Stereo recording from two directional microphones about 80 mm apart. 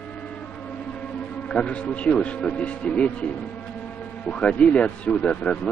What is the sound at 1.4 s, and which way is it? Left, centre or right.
Speech, centre.